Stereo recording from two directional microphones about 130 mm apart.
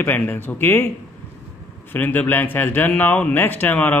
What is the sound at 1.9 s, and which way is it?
Speech, 15° left (ahead or behind).